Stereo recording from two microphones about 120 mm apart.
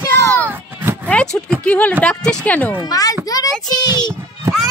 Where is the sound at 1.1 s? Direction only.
5° left (ahead or behind).